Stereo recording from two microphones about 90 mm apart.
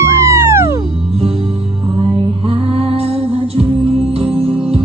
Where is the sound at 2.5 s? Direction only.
90° right.